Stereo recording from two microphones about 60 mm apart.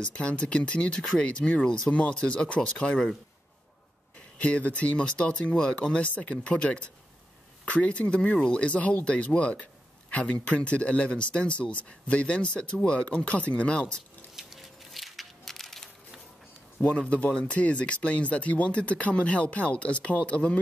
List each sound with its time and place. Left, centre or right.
0.0 s speech: left
4.4 s speech: left
14.3 s a sound: centre
17.1 s speech: centre